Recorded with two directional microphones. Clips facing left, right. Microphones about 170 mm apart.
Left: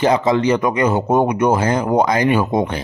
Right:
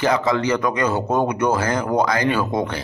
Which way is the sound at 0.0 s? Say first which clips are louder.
Left 4 dB; 20° left (ahead or behind).